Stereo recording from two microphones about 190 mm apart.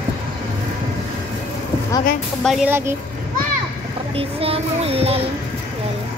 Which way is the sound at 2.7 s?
10° right (ahead or behind).